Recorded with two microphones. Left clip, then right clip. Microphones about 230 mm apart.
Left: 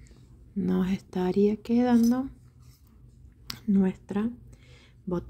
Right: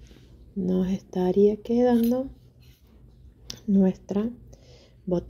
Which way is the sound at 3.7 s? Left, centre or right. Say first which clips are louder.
Right 4 dB; left.